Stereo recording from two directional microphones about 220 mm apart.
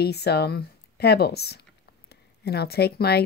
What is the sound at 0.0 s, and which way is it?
Speech, 50° left (ahead or behind).